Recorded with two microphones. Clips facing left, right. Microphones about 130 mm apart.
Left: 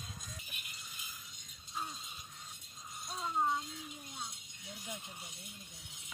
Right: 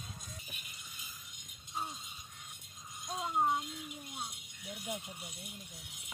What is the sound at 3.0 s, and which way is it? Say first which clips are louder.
Rattle: right 2 dB; 20° right (ahead or behind).